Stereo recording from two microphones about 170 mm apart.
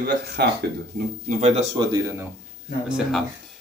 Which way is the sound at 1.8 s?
20° right (ahead or behind).